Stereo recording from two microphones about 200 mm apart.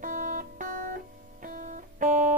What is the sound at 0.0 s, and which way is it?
Music, 40° right (ahead or behind).